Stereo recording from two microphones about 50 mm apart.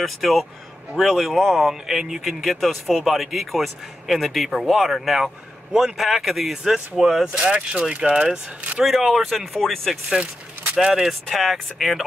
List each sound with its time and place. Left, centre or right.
0.0 s speech: centre
8.8 s speech: centre
10.8 s speech: centre
11.2 s speech: centre